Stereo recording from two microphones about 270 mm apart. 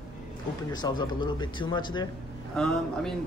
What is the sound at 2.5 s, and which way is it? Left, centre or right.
Speech, centre.